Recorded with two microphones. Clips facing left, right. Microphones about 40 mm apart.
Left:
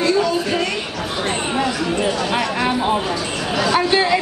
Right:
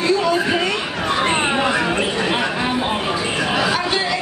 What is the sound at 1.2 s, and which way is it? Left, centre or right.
Chatter, right.